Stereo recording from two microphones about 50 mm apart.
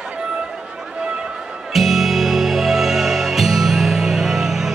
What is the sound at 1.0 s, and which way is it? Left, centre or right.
Music, centre.